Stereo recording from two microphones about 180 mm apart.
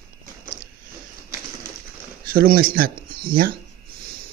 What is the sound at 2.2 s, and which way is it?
Speech, 55° right (ahead or behind).